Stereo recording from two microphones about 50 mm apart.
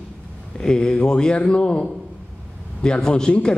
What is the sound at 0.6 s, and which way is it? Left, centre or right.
A man's voice, centre.